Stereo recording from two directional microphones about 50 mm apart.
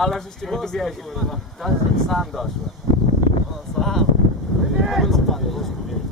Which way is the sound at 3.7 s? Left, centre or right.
Centre.